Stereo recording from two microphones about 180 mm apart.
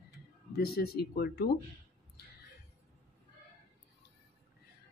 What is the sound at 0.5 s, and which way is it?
Speech, 60° left (ahead or behind).